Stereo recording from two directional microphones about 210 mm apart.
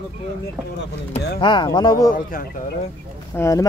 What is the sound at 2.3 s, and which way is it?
Speech, 40° left (ahead or behind).